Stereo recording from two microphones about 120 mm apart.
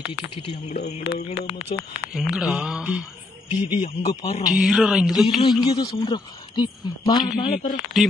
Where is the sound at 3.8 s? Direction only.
75° left (ahead or behind).